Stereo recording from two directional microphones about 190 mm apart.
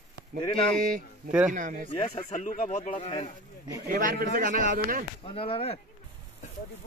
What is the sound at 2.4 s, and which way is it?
Speech, 40° left (ahead or behind).